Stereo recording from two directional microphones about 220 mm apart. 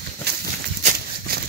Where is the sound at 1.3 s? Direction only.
40° right (ahead or behind).